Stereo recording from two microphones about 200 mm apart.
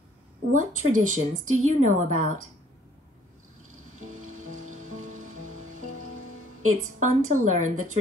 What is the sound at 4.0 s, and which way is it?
Music, 40° right (ahead or behind).